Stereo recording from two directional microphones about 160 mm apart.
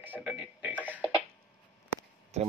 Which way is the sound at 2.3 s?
40° right (ahead or behind).